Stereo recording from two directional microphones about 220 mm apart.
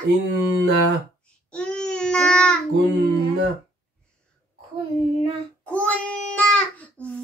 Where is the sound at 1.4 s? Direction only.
5° left (ahead or behind).